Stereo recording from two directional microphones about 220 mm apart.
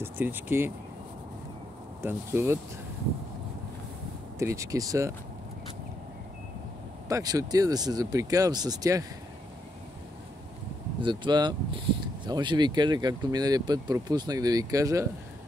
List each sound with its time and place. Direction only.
0.0 s speech: 10° right (ahead or behind)
2.0 s speech: 10° right (ahead or behind)
4.4 s speech: 15° right (ahead or behind)
7.1 s speech: 15° right (ahead or behind)
11.0 s speech: 20° right (ahead or behind)